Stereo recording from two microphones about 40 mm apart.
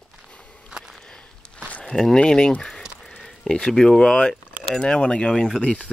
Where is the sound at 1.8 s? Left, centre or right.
Left.